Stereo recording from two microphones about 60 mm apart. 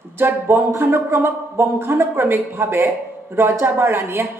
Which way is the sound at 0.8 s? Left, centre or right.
Right.